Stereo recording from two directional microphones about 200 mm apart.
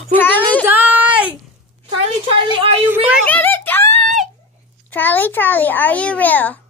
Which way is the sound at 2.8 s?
5° right (ahead or behind).